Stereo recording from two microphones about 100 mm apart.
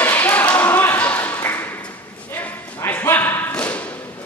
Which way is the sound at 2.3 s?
20° left (ahead or behind).